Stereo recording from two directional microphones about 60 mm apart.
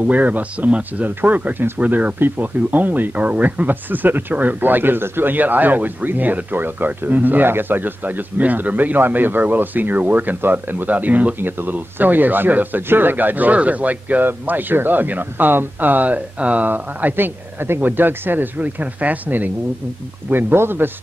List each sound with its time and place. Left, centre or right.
0.0 s speech: right